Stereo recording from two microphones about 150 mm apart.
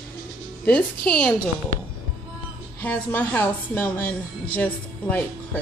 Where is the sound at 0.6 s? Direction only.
5° left (ahead or behind).